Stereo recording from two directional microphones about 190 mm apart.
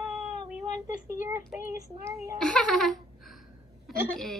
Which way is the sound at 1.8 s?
15° right (ahead or behind).